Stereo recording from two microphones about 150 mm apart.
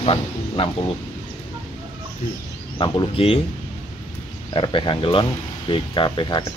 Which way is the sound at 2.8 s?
35° left (ahead or behind).